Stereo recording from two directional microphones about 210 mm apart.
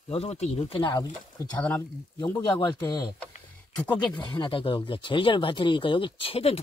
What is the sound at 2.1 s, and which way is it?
Speech, 20° left (ahead or behind).